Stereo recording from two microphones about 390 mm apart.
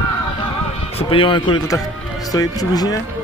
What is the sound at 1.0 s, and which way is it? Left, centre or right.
Speech, centre.